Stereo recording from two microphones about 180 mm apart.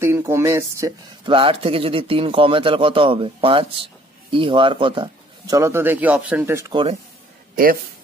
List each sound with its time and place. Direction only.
0.0 s speech: 15° right (ahead or behind)
5.6 s speech: 15° right (ahead or behind)
6.7 s speech: 30° right (ahead or behind)
7.5 s speech: 55° right (ahead or behind)